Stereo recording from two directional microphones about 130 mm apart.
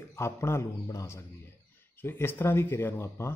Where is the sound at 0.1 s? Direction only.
20° left (ahead or behind).